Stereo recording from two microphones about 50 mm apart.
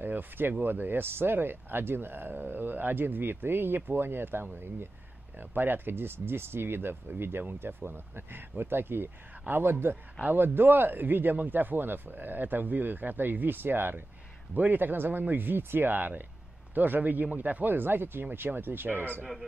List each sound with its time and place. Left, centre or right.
0.0 s a man's voice: right